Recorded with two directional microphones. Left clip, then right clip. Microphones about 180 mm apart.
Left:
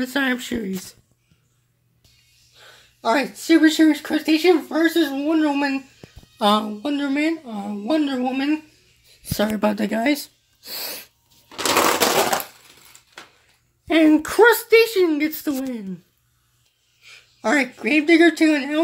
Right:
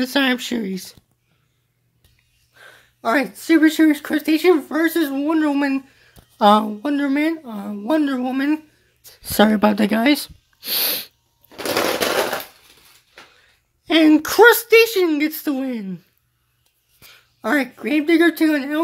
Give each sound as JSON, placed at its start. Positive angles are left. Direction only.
{"t": 0.0, "sound": "speech", "side_deg": -25}
{"t": 2.5, "sound": "speech", "side_deg": -30}
{"t": 9.3, "sound": "speech", "side_deg": -35}
{"t": 9.6, "sound": "speech", "side_deg": -25}
{"t": 13.8, "sound": "speech", "side_deg": -20}
{"t": 17.0, "sound": "speech", "side_deg": -15}